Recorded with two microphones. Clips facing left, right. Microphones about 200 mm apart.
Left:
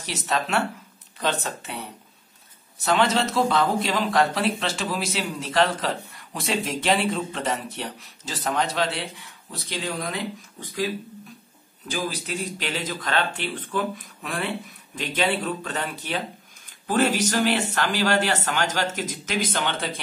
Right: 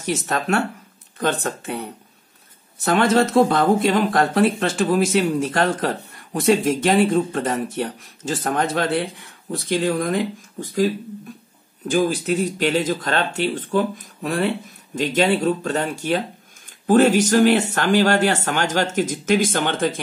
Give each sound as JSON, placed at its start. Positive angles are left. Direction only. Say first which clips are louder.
{"t": 0.0, "sound": "speech", "louder": "right 4 dB", "side_deg": -50}
{"t": 11.9, "sound": "speech", "louder": "right 10 dB", "side_deg": -50}